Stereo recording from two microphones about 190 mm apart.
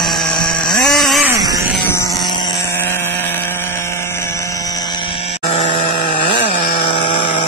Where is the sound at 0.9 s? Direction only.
Centre (ahead or behind).